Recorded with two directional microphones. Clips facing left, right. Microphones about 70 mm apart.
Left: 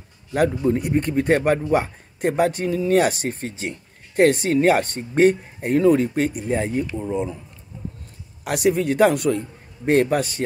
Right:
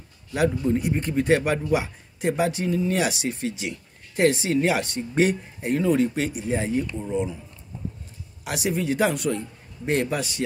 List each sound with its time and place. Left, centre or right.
0.7 s speech: left
8.5 s speech: left